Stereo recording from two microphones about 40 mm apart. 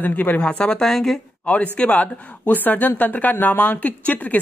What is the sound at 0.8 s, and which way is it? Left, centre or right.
Speech, centre.